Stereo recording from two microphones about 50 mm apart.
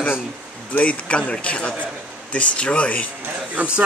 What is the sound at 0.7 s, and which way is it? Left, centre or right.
Speech, left.